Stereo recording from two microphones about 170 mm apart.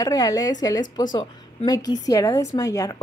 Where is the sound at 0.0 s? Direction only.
20° left (ahead or behind).